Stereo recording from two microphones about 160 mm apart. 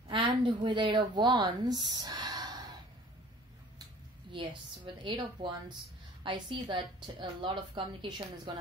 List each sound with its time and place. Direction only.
0.1 s speech: 30° right (ahead or behind)
4.3 s a sound: 30° right (ahead or behind)
5.0 s a woman's voice: 30° right (ahead or behind)